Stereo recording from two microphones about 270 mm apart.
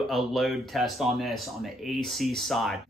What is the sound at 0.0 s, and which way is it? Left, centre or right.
Speech, centre.